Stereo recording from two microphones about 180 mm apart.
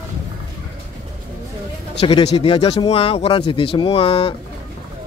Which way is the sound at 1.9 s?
30° left (ahead or behind).